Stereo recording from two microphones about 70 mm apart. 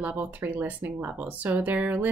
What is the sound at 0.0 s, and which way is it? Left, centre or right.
Speech, right.